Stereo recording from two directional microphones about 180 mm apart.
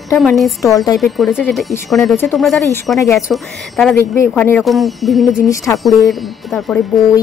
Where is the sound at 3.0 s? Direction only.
15° left (ahead or behind).